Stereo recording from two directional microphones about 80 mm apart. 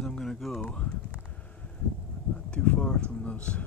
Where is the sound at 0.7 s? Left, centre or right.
Centre.